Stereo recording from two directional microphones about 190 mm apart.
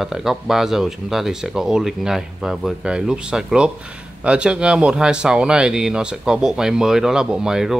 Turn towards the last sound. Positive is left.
turn(degrees=-5)  # may be behind; listen again after turning